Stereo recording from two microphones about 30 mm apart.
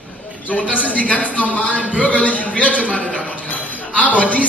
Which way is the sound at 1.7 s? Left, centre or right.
Right.